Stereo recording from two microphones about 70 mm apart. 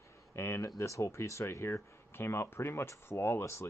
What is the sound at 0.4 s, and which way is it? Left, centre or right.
Speech, left.